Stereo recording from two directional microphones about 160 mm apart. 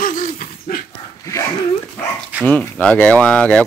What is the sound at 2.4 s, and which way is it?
Speech, 10° left (ahead or behind).